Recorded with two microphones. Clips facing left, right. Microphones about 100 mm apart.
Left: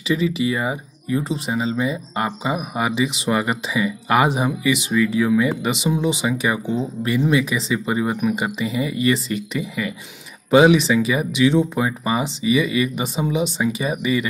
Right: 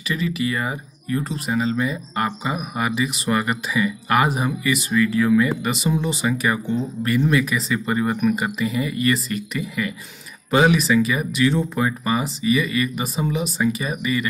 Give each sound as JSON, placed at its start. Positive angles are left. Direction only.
{"t": 0.1, "sound": "speech", "side_deg": 20}
{"t": 7.7, "sound": "speech", "side_deg": 15}
{"t": 8.4, "sound": "speech", "side_deg": 25}